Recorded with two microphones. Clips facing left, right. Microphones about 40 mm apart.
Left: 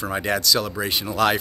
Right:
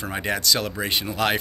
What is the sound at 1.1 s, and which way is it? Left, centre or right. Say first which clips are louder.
Speech: left 4 dB; centre.